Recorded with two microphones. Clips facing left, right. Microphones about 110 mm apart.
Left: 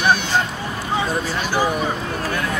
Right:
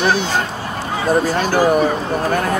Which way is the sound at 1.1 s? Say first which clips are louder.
Right 7 dB; 45° right (ahead or behind).